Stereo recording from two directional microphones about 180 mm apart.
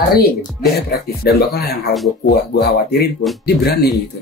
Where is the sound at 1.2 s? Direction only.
60° left (ahead or behind).